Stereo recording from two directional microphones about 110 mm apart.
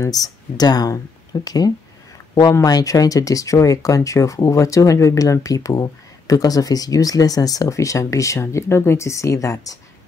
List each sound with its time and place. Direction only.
0.0 s speech: 35° left (ahead or behind)